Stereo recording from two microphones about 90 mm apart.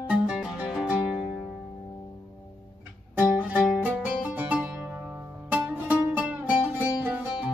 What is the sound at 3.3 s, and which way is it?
Music, 10° right (ahead or behind).